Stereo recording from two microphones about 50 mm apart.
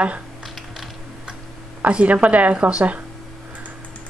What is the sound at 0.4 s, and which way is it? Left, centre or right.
Typing, centre.